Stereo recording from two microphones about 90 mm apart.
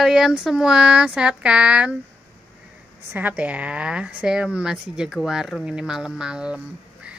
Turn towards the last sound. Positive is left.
turn(degrees=-10)  # may be behind; listen again after turning